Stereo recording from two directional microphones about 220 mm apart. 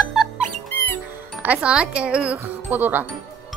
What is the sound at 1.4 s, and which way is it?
Speech, 5° right (ahead or behind).